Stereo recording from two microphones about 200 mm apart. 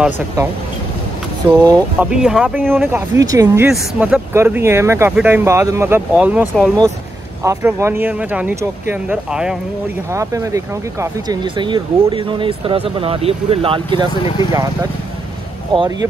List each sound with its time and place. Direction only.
1.5 s speech: 20° right (ahead or behind)
2.1 s speech: 5° right (ahead or behind)
6.5 s speech: 5° left (ahead or behind)
7.4 s speech: 10° right (ahead or behind)
10.1 s speech: 15° right (ahead or behind)